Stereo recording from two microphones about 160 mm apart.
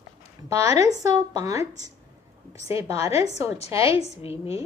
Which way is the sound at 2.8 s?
40° left (ahead or behind).